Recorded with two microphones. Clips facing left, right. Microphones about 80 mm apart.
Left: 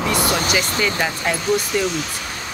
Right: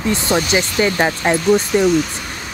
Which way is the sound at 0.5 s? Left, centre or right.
Right.